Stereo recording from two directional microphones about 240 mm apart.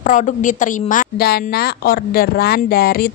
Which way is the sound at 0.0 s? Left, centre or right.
Left.